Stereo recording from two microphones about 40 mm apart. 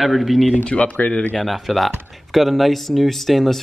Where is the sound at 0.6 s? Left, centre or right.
Left.